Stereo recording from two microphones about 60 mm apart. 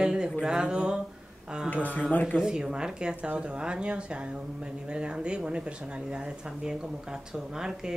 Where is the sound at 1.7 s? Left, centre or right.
Left.